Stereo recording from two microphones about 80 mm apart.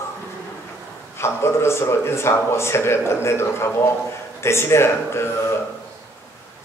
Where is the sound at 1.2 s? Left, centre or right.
Left.